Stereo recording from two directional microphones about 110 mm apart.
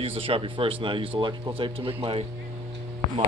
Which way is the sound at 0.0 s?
60° right (ahead or behind).